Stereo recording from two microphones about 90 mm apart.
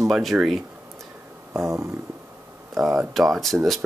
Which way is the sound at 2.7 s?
5° right (ahead or behind).